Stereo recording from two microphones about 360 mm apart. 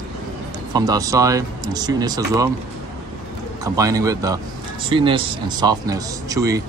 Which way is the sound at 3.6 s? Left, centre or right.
Centre.